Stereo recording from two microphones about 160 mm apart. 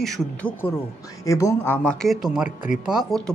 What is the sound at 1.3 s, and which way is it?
A man's voice, 20° left (ahead or behind).